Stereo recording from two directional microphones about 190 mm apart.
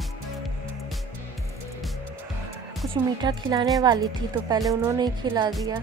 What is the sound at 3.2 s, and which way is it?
Speech, 20° right (ahead or behind).